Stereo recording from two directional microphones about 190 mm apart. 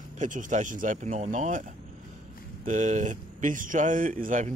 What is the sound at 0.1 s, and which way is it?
Speech, 40° right (ahead or behind).